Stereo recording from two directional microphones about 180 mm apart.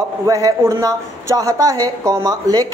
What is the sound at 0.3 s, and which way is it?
A woman's voice, 20° right (ahead or behind).